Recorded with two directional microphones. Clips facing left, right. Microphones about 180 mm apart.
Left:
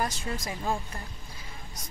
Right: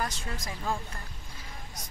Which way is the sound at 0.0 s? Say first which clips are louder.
Left 3 dB; 15° left (ahead or behind).